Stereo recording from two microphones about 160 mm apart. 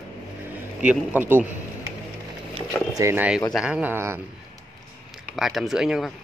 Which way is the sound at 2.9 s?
15° right (ahead or behind).